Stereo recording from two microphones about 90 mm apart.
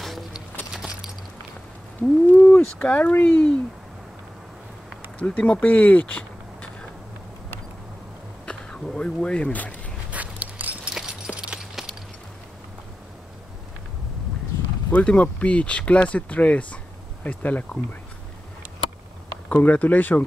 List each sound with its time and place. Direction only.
0.0 s music: centre (ahead or behind)
0.7 s a sound: 5° right (ahead or behind)
2.0 s a sound: 15° left (ahead or behind)
2.8 s speech: 15° left (ahead or behind)
5.2 s speech: 15° left (ahead or behind)
8.5 s speech: 10° left (ahead or behind)
10.1 s a sound: 15° right (ahead or behind)
14.9 s speech: 15° left (ahead or behind)
19.5 s speech: 20° left (ahead or behind)